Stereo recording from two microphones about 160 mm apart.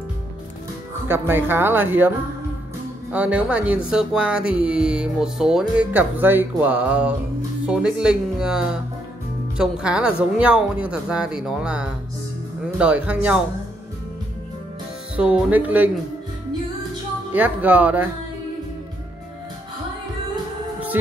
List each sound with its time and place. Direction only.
1.0 s speech: 15° right (ahead or behind)
15.1 s speech: 5° right (ahead or behind)
17.3 s speech: 10° right (ahead or behind)
20.9 s speech: 10° right (ahead or behind)